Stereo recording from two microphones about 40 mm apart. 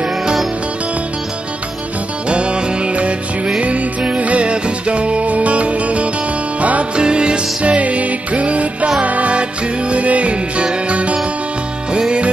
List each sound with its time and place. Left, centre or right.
0.0 s music: centre
2.2 s music: right
7.0 s music: right